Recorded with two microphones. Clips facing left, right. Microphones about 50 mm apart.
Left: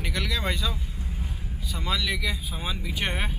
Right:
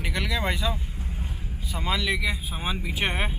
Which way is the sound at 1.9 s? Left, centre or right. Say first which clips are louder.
Right 2 dB; centre.